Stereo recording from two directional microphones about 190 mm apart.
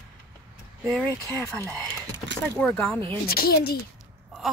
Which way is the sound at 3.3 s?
50° left (ahead or behind).